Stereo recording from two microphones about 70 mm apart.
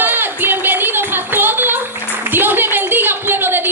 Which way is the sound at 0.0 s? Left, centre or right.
Right.